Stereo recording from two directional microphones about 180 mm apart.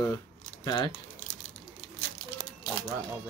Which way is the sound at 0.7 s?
25° left (ahead or behind).